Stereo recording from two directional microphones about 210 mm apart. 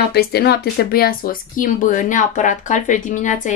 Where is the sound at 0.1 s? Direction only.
50° left (ahead or behind).